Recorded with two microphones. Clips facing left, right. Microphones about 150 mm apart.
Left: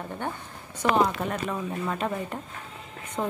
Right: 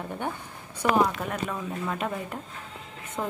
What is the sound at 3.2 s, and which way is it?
Speech, 20° left (ahead or behind).